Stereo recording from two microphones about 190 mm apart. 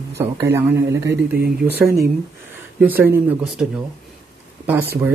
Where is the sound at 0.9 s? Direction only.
60° right (ahead or behind).